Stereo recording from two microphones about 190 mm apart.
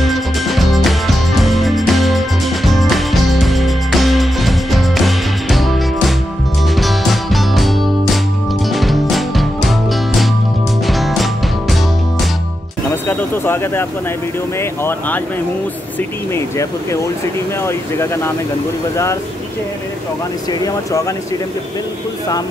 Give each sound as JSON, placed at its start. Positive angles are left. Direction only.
{"t": 0.0, "sound": "music", "side_deg": 0}
{"t": 12.9, "sound": "a sound", "side_deg": 10}
{"t": 14.6, "sound": "speech", "side_deg": 10}
{"t": 16.3, "sound": "speech", "side_deg": 15}
{"t": 20.6, "sound": "speech", "side_deg": 15}